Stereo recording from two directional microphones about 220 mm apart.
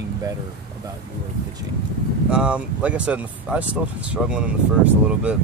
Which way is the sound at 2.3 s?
5° right (ahead or behind).